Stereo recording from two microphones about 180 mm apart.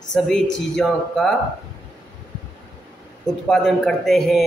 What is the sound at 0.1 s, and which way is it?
Speech, 5° left (ahead or behind).